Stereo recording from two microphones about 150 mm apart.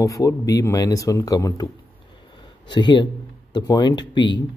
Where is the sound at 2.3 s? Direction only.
30° left (ahead or behind).